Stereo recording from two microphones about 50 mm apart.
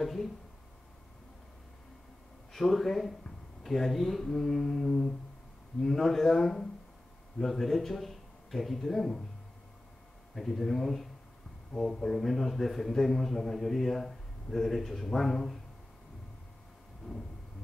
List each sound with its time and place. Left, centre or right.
0.0 s a man's voice: centre
2.5 s a man's voice: centre
10.3 s a man's voice: centre